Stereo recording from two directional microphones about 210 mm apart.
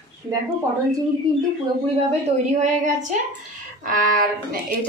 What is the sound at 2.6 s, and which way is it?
Speech, 35° right (ahead or behind).